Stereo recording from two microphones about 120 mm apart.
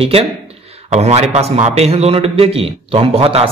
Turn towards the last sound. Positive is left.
turn(degrees=-50)  # may be behind; listen again after turning